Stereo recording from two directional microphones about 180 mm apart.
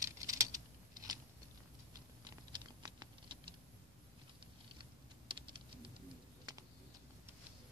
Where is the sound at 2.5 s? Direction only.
25° right (ahead or behind).